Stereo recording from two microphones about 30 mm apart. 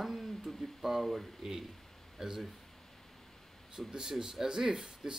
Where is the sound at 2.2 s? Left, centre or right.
Centre.